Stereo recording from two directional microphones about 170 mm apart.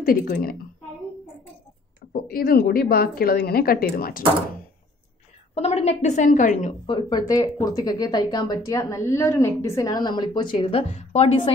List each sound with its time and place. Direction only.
0.0 s a woman's voice: 55° left (ahead or behind)
2.2 s a woman's voice: 60° left (ahead or behind)
5.5 s a woman's voice: 35° left (ahead or behind)
6.9 s speech: 30° left (ahead or behind)